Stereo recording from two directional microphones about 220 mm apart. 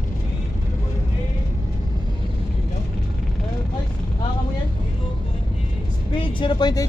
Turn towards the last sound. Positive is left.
turn(degrees=20)  # may be behind; listen again after turning